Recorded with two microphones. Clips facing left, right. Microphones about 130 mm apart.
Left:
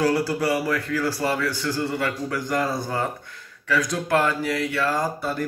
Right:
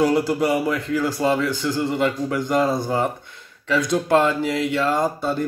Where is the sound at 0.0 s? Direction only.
20° right (ahead or behind).